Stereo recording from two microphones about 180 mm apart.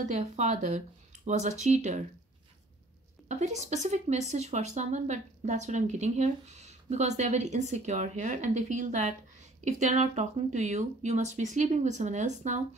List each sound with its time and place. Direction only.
0.0 s speech: 40° right (ahead or behind)
3.3 s speech: 40° right (ahead or behind)